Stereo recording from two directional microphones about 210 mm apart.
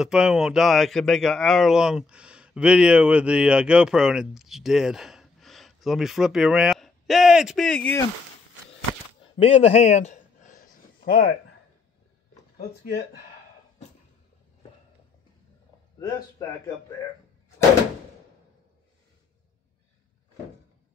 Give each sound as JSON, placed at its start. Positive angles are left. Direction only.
{"t": 0.0, "sound": "speech", "side_deg": -5}
{"t": 9.4, "sound": "a sound", "side_deg": 30}
{"t": 16.0, "sound": "speech", "side_deg": 15}